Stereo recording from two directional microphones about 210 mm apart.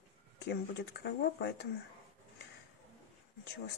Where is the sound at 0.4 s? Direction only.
55° left (ahead or behind).